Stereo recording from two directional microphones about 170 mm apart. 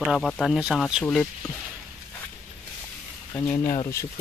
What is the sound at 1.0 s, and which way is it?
Speech, 10° left (ahead or behind).